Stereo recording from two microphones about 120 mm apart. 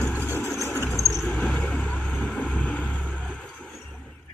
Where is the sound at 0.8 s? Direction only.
Centre (ahead or behind).